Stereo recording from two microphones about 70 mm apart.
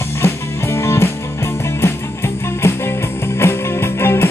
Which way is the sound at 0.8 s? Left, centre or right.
Left.